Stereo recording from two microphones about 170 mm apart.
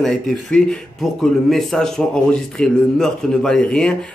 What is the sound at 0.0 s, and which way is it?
Speech, 5° left (ahead or behind).